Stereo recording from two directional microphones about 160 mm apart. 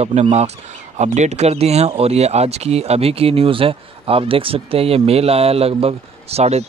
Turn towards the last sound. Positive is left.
turn(degrees=-40)  # may be behind; listen again after turning